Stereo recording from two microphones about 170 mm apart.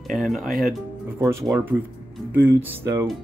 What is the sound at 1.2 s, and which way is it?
Speech, 20° right (ahead or behind).